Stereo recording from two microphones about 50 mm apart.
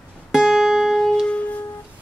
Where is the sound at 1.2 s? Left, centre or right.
Left.